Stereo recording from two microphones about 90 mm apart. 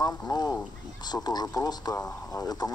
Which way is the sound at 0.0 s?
45° left (ahead or behind).